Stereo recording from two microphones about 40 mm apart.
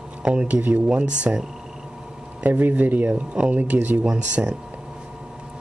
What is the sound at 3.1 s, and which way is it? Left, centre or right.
Speech, right.